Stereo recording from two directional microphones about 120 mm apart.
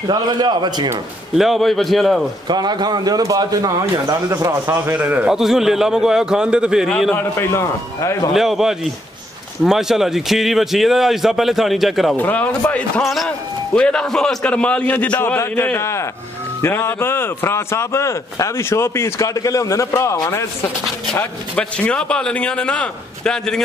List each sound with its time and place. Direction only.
0.1 s a man's voice: 35° right (ahead or behind)
1.3 s a man's voice: centre (ahead or behind)
2.4 s a man's voice: 35° right (ahead or behind)
4.9 s a man's voice: 10° right (ahead or behind)
7.3 s a man's voice: 25° left (ahead or behind)
8.3 s a man's voice: centre (ahead or behind)
12.2 s a man's voice: 15° left (ahead or behind)
13.0 s a man's voice: centre (ahead or behind); by 20.4 s 25° left (ahead or behind)
21.2 s a man's voice: 10° left (ahead or behind)